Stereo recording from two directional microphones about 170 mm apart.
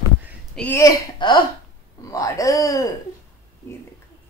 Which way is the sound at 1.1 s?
25° left (ahead or behind).